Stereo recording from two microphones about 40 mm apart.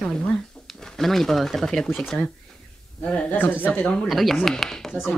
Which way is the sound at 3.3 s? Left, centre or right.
Left.